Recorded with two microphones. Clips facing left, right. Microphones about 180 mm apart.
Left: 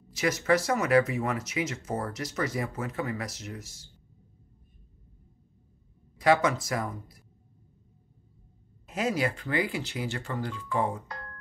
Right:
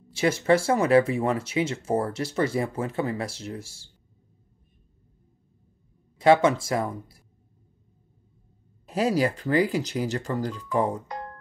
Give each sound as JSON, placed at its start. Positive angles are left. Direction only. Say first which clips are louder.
{"t": 0.1, "sound": "speech", "louder": "right 4 dB", "side_deg": -30}
{"t": 6.1, "sound": "speech", "louder": "right 5 dB", "side_deg": -25}
{"t": 8.8, "sound": "speech", "louder": "right 5 dB", "side_deg": -35}